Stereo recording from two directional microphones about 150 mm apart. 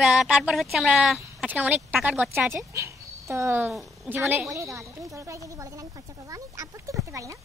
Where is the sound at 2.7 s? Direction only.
20° right (ahead or behind).